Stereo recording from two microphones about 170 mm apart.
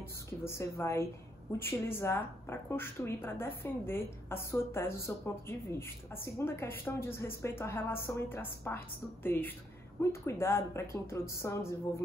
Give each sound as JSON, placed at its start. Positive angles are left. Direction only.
{"t": 0.4, "sound": "speech", "side_deg": 15}